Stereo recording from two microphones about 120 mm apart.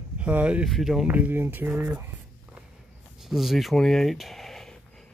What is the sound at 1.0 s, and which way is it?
Speech, 15° right (ahead or behind).